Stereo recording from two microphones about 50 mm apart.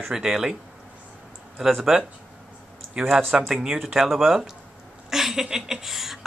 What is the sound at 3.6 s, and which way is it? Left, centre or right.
Speech, centre.